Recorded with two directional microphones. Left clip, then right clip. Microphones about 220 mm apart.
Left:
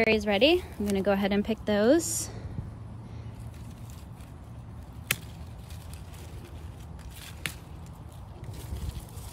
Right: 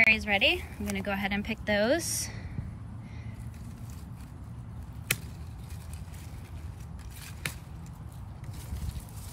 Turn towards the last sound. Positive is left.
turn(degrees=0)  # may be behind; listen again after turning